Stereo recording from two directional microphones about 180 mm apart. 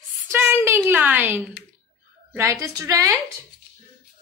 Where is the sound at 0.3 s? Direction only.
10° right (ahead or behind).